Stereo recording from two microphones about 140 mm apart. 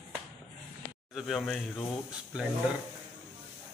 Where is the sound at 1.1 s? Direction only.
Centre (ahead or behind).